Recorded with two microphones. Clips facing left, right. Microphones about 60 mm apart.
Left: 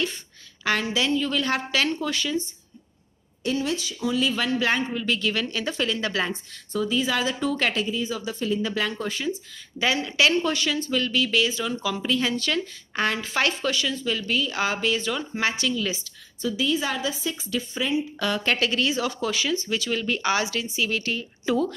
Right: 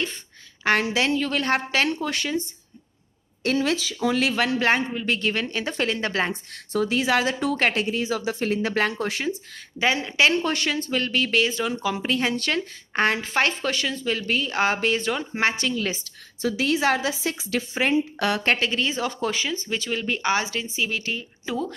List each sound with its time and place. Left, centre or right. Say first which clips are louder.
0.9 s speech: right 1 dB; right
3.4 s speech: right 3 dB; right
4.3 s speech: right 2 dB; right
6.7 s speech: right 3 dB; right
7.8 s speech: right 3 dB; right
9.8 s speech: right 1 dB; right
10.3 s speech: even; right
16.3 s a woman's voice: right 2 dB; right
18.2 s speech: right 2 dB; right
18.6 s speech: left 1 dB; right
20.9 s speech: left 1 dB; centre